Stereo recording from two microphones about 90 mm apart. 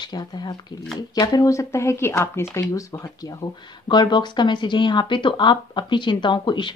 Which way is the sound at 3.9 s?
55° left (ahead or behind).